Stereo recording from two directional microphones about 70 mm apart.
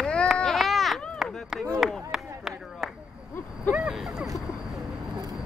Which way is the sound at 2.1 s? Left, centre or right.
Centre.